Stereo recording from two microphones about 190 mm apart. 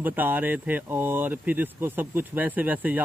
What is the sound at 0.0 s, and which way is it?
Speech, 10° right (ahead or behind).